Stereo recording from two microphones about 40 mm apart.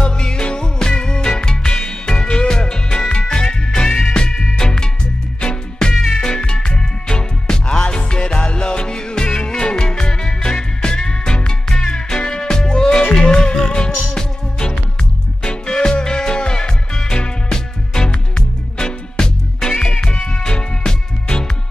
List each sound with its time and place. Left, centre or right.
0.0 s music: left